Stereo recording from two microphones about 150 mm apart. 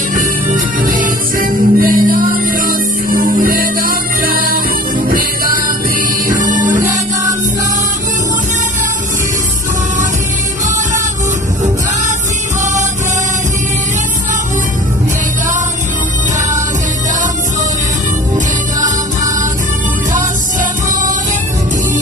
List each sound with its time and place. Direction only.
0.1 s music: 60° right (ahead or behind)